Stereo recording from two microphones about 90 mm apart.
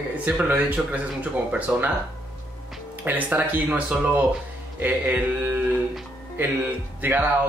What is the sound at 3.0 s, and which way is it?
Speech, 20° right (ahead or behind).